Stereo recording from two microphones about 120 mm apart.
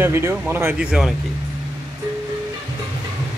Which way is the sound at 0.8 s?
5° right (ahead or behind).